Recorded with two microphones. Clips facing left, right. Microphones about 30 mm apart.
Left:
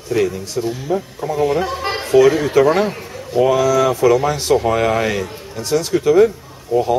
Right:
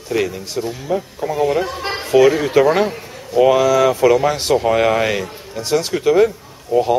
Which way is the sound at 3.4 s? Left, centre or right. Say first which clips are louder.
Right 2 dB; centre.